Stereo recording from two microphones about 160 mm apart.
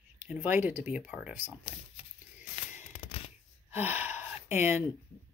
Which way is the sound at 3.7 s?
10° right (ahead or behind).